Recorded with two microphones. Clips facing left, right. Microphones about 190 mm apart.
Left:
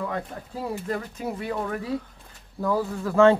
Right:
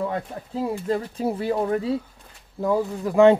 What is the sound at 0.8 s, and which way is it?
Speech, 30° right (ahead or behind).